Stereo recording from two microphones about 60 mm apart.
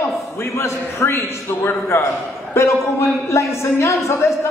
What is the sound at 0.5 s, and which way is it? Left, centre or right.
A man's voice, left.